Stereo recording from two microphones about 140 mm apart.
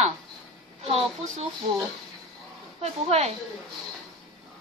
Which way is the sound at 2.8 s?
50° right (ahead or behind).